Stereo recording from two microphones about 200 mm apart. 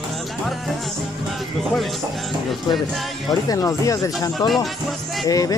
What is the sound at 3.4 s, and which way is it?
Speech, 15° left (ahead or behind).